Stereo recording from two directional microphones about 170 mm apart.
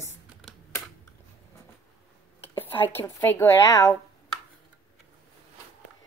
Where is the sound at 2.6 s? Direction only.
10° left (ahead or behind).